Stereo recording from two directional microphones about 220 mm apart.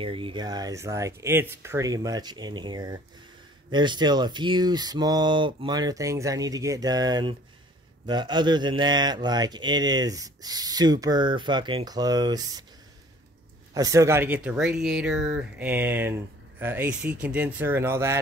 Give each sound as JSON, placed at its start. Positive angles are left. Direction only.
{"t": 0.0, "sound": "speech", "side_deg": -25}
{"t": 13.7, "sound": "speech", "side_deg": -15}